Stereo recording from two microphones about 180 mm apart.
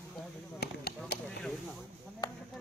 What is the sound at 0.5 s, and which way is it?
Speech, 60° left (ahead or behind).